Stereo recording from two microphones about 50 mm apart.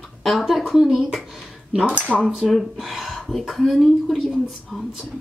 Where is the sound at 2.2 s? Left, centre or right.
Centre.